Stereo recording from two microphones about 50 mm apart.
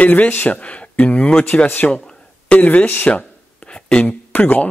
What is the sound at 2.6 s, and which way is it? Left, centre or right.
A man's voice, left.